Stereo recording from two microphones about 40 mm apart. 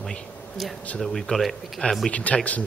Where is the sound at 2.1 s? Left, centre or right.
Left.